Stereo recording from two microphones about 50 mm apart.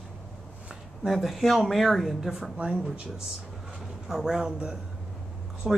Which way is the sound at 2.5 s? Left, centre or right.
Centre.